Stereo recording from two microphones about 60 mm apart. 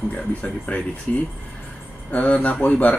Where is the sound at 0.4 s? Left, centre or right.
Left.